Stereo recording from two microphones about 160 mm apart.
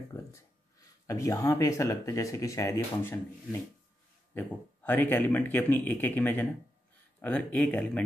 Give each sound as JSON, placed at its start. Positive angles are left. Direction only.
{"t": 1.0, "sound": "speech", "side_deg": 20}
{"t": 4.3, "sound": "a man's voice", "side_deg": 10}